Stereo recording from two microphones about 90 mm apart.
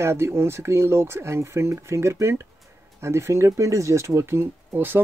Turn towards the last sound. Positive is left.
turn(degrees=-25)  # may be behind; listen again after turning